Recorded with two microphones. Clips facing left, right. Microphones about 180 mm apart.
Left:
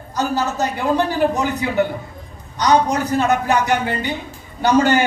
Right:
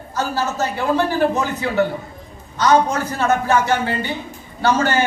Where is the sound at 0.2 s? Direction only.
15° left (ahead or behind).